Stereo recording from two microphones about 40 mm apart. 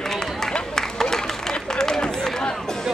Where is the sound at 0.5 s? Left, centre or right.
Centre.